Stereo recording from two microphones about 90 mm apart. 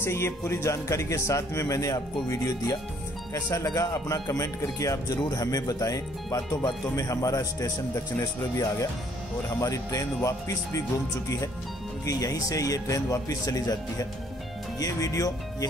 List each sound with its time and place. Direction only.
0.0 s speech: 30° left (ahead or behind)
12.1 s speech: 40° left (ahead or behind)